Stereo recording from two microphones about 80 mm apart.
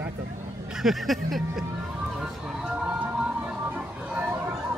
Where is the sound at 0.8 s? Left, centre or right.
Centre.